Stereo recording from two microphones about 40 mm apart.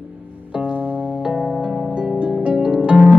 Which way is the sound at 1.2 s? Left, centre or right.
Right.